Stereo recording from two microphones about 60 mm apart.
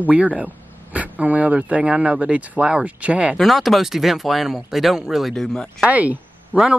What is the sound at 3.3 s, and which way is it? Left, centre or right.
Speech, centre.